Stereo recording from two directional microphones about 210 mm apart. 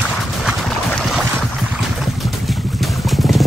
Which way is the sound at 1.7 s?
Centre (ahead or behind).